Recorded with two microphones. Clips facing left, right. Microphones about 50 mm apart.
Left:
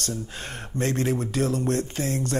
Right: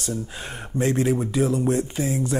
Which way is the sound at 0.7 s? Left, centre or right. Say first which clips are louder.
Right 4 dB; centre.